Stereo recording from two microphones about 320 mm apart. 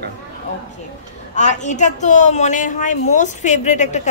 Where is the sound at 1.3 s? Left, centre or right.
Left.